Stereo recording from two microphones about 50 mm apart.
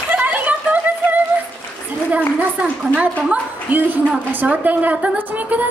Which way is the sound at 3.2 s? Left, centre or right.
Right.